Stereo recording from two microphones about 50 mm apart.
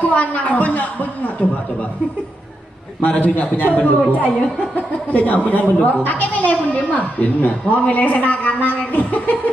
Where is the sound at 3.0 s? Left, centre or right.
Left.